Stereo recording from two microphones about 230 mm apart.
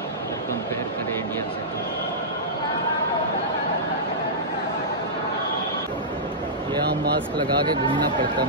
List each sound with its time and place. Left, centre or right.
7.3 s speech: centre